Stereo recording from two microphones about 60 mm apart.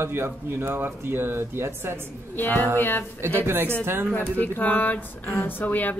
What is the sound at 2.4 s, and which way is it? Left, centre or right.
Speech, left.